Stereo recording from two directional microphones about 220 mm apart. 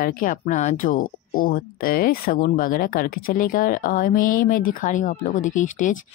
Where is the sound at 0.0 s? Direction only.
40° left (ahead or behind).